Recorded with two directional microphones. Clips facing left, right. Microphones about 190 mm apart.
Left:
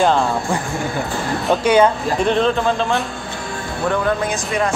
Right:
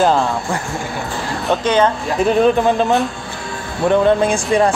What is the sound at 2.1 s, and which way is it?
Speech, 5° right (ahead or behind).